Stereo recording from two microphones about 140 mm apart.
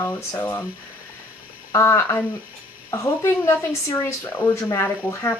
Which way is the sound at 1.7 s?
20° left (ahead or behind).